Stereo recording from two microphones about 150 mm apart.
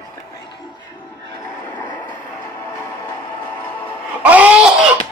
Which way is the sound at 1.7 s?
10° left (ahead or behind).